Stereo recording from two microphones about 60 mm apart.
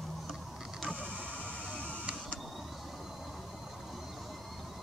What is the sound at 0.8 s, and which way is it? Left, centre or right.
Printer, centre.